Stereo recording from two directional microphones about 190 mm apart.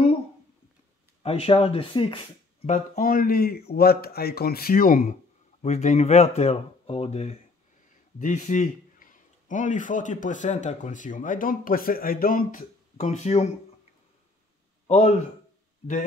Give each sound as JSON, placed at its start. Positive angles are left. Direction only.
{"t": 1.2, "sound": "speech", "side_deg": 30}
{"t": 2.6, "sound": "a man's voice", "side_deg": 40}
{"t": 14.9, "sound": "speech", "side_deg": 35}